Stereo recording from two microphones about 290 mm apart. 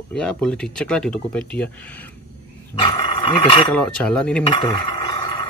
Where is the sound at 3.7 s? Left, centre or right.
Centre.